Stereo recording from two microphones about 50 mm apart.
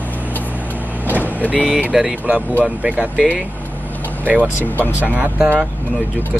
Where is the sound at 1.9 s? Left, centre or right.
Centre.